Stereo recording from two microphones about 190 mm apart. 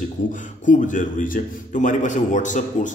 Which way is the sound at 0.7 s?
45° left (ahead or behind).